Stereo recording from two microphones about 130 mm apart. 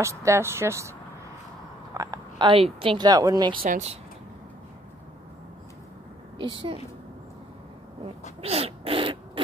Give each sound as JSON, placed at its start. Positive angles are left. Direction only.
{"t": 0.0, "sound": "speech", "side_deg": -20}
{"t": 2.0, "sound": "speech", "side_deg": -30}
{"t": 3.1, "sound": "speech", "side_deg": -30}
{"t": 3.7, "sound": "speech", "side_deg": -55}
{"t": 6.3, "sound": "a woman's voice", "side_deg": -40}
{"t": 8.4, "sound": "a sound", "side_deg": -50}